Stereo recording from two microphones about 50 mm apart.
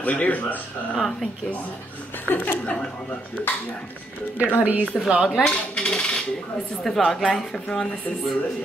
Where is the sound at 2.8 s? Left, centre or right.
Left.